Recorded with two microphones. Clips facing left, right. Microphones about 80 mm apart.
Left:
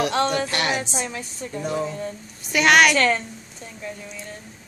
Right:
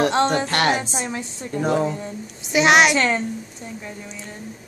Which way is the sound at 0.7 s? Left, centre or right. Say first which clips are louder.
Right 2 dB; right.